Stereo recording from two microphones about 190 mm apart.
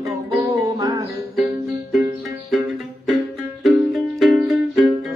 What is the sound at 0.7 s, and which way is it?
Music, 20° right (ahead or behind).